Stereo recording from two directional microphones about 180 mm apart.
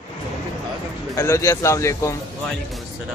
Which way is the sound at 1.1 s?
15° left (ahead or behind).